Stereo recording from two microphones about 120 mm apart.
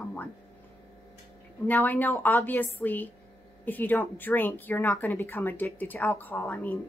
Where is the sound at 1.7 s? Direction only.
15° left (ahead or behind).